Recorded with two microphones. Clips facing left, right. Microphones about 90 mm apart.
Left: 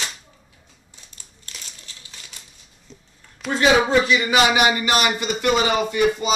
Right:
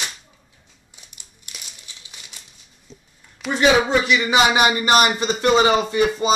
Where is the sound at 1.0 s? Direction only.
15° right (ahead or behind).